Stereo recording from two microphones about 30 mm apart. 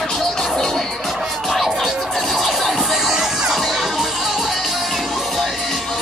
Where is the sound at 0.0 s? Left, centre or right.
Centre.